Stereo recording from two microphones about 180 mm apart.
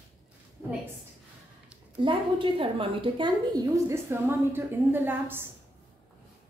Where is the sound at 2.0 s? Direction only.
30° right (ahead or behind); by 5.5 s 10° right (ahead or behind).